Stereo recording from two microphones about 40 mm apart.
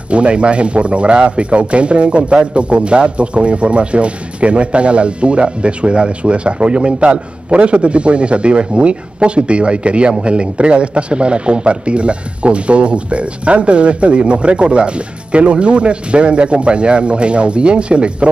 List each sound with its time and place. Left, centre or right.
0.1 s a man's voice: right